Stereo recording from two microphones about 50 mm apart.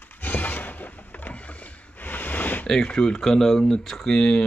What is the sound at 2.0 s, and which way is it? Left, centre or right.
Snort, left.